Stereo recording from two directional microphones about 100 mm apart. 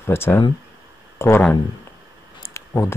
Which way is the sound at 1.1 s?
25° left (ahead or behind).